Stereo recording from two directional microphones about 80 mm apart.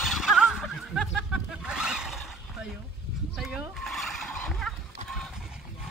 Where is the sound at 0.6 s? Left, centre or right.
Centre.